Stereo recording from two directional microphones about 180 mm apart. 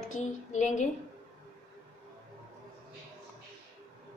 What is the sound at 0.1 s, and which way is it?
Speech, 40° left (ahead or behind).